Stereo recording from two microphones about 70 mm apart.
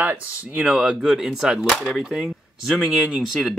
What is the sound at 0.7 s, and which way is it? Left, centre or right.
Speech, centre.